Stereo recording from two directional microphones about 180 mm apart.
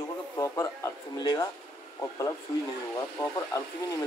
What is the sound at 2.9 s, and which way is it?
Speech, 20° left (ahead or behind).